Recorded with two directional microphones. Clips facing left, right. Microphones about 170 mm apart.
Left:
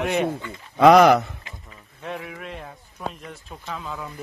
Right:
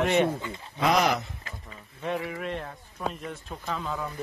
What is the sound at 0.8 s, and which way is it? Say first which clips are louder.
Speech: left 11 dB; 60° left (ahead or behind).